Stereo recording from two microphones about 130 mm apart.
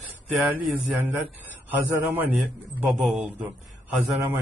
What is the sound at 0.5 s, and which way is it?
Speech, 10° right (ahead or behind).